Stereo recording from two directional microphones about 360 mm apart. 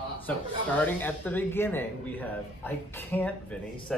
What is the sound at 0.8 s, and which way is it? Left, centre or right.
Speech, centre.